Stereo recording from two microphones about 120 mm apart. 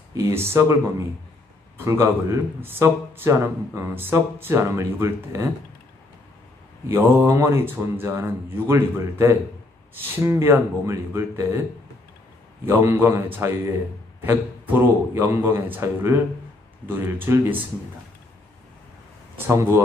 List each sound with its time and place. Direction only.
0.1 s a man's voice: 20° right (ahead or behind)
6.9 s a man's voice: 20° right (ahead or behind)
12.6 s a man's voice: 20° right (ahead or behind)
19.3 s a man's voice: 20° right (ahead or behind)